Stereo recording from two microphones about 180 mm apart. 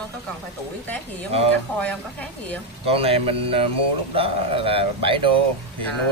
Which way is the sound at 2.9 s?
30° right (ahead or behind).